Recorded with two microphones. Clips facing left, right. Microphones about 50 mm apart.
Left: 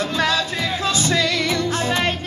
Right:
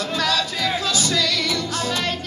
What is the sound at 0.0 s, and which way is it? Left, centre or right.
Music, left.